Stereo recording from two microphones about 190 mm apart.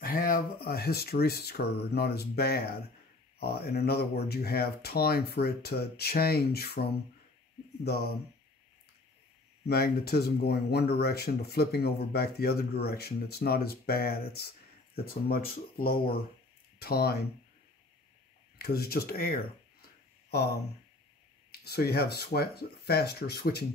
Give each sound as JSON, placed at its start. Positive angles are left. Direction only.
{"t": 0.0, "sound": "speech", "side_deg": 50}
{"t": 9.7, "sound": "speech", "side_deg": 55}
{"t": 18.6, "sound": "a sound", "side_deg": 55}
{"t": 21.5, "sound": "speech", "side_deg": 55}